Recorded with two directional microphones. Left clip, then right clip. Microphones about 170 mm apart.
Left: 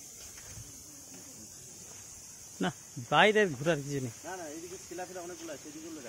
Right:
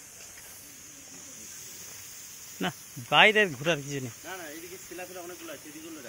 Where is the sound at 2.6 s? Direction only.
25° left (ahead or behind).